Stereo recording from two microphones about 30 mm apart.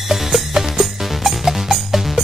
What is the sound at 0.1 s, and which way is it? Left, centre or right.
Music, centre.